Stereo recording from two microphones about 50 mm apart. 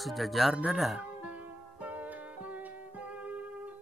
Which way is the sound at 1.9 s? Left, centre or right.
Right.